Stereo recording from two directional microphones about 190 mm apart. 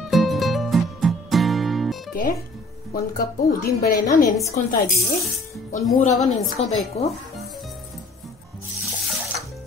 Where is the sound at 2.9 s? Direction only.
50° left (ahead or behind).